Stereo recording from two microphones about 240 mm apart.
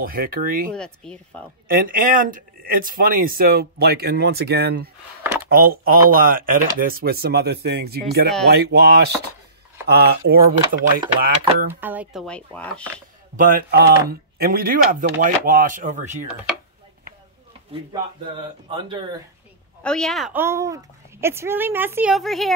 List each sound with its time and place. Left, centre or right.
0.0 s speech: right
0.7 s speech: centre
1.7 s speech: right
5.2 s a sound: centre
5.5 s speech: right
11.0 s speech: centre
13.4 s speech: right
17.7 s speech: right
19.8 s a woman's voice: centre